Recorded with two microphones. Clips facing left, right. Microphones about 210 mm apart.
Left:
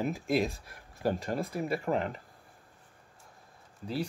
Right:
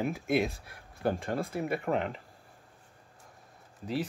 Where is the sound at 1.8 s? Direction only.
Centre (ahead or behind).